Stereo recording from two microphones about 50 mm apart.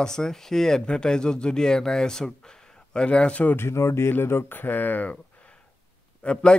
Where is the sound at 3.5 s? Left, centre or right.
Left.